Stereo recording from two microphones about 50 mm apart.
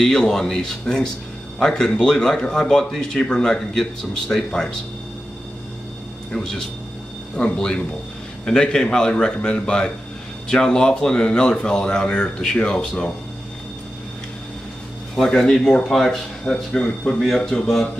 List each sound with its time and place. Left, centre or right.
0.0 s speech: centre
6.3 s speech: centre
15.1 s speech: centre